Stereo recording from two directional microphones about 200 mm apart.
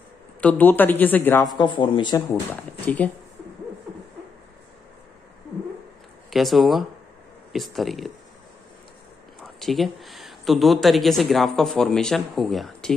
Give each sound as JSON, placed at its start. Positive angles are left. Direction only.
{"t": 0.4, "sound": "a woman's voice", "side_deg": 10}
{"t": 1.6, "sound": "speech", "side_deg": 25}
{"t": 2.5, "sound": "a woman's voice", "side_deg": 10}
{"t": 6.3, "sound": "speech", "side_deg": 0}
{"t": 9.4, "sound": "speech", "side_deg": 0}